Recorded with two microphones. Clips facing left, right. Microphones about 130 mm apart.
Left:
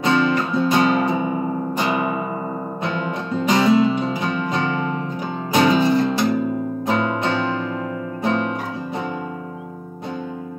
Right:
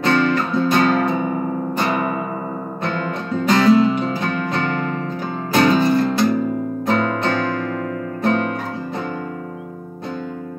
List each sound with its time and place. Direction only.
0.0 s music: 15° left (ahead or behind)
3.4 s music: 15° left (ahead or behind)